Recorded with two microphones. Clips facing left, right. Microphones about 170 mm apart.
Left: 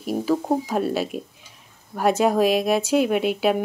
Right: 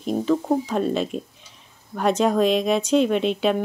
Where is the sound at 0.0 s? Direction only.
5° left (ahead or behind).